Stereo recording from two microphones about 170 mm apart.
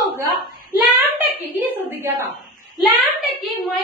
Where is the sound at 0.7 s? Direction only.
10° right (ahead or behind).